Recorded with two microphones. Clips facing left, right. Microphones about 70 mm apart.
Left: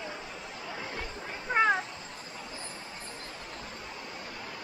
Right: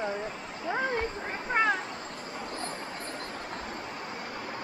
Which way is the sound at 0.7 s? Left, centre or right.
Right.